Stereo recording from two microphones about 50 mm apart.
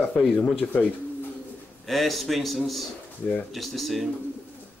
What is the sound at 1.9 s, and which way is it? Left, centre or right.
Speech, centre.